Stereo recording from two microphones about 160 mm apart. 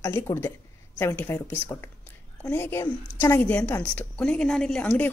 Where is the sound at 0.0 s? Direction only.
15° left (ahead or behind).